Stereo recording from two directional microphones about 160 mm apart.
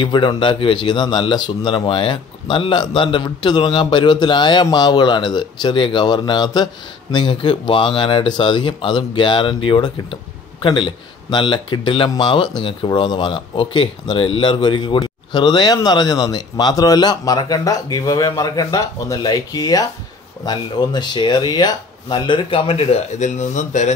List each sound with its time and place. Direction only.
0.0 s a man's voice: 30° left (ahead or behind); by 23.9 s 50° left (ahead or behind)